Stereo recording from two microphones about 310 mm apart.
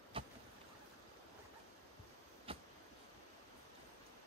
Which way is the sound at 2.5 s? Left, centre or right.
Centre.